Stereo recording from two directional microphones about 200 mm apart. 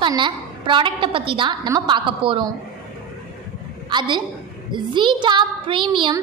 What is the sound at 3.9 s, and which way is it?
A woman's voice, 25° right (ahead or behind).